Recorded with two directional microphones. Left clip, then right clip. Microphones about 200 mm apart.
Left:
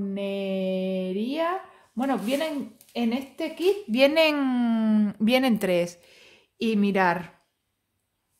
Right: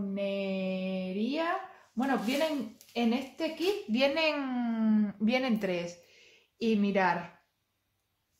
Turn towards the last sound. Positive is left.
turn(degrees=60)  # may be behind; listen again after turning